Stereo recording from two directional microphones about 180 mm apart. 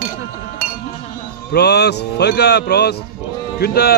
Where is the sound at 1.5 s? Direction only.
65° left (ahead or behind).